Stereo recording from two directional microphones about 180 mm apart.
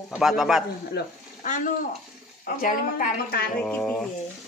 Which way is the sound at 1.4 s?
45° left (ahead or behind).